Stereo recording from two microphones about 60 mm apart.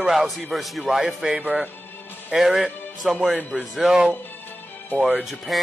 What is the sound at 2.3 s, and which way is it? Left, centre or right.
Speech, centre.